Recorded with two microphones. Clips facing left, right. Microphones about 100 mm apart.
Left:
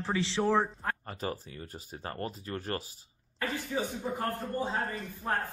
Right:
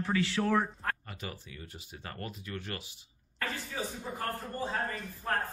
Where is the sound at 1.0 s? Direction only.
40° left (ahead or behind).